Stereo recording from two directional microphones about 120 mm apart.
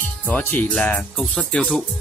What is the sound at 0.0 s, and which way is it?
Speech, 15° left (ahead or behind).